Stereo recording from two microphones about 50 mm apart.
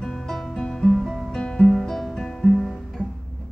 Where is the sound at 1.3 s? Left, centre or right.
Centre.